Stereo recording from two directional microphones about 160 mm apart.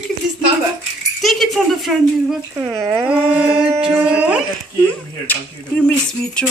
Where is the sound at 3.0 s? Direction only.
10° right (ahead or behind).